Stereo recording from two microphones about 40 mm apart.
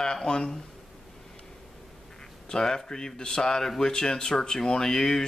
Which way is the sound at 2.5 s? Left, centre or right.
Centre.